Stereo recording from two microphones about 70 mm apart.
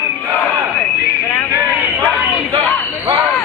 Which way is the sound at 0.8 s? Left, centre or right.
Left.